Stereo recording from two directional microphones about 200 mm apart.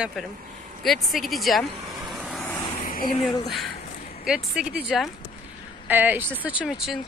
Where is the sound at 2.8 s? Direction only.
45° left (ahead or behind).